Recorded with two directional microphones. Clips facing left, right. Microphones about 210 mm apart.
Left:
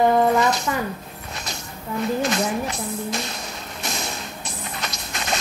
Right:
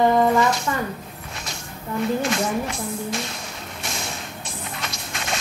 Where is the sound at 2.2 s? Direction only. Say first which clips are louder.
Even; 40° left (ahead or behind).